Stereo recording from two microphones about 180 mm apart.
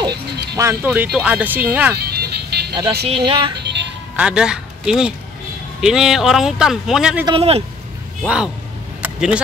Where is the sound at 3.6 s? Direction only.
75° right (ahead or behind).